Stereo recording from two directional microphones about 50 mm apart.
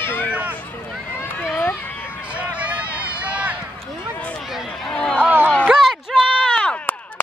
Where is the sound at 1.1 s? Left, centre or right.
Left.